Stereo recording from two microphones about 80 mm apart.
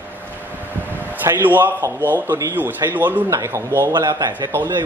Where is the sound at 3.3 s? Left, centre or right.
Right.